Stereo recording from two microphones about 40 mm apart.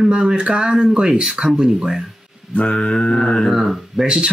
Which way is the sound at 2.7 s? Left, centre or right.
Left.